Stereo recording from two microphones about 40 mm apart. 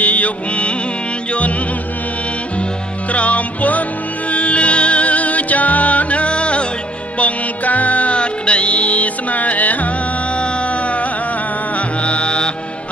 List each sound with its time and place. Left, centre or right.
0.0 s music: left
3.1 s music: left
10.3 s music: left